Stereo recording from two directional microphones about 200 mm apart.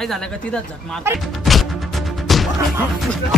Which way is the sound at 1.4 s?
Centre (ahead or behind).